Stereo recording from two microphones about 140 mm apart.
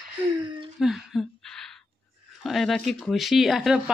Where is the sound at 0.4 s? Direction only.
35° right (ahead or behind).